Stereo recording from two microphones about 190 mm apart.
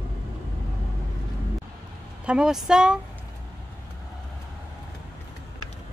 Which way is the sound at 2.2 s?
5° right (ahead or behind).